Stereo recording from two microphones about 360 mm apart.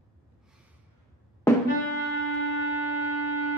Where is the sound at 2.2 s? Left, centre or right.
Left.